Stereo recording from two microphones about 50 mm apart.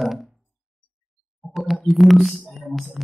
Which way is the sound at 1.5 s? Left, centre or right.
Centre.